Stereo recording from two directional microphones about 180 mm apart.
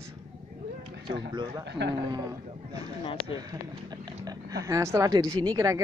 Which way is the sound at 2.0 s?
20° right (ahead or behind).